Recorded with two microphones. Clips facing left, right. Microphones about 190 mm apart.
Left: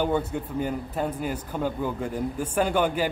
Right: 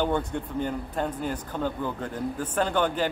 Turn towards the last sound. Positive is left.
turn(degrees=10)  # may be behind; listen again after turning